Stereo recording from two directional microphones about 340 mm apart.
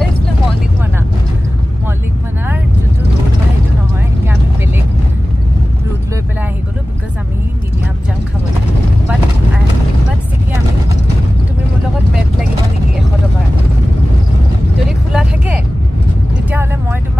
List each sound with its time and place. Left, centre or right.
15.1 s vehicle: centre